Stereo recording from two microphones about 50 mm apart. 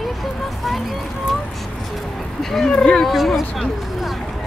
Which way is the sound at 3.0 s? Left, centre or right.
Centre.